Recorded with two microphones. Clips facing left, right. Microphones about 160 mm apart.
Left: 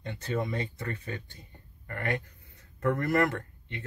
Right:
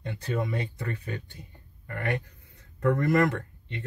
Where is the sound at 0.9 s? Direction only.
15° right (ahead or behind).